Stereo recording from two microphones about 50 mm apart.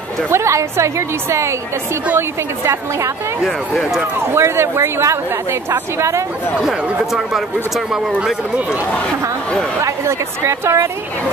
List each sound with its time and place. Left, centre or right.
0.3 s a woman's voice: right
3.4 s speech: centre
4.2 s speech: right
7.1 s speech: centre
9.8 s a woman's voice: right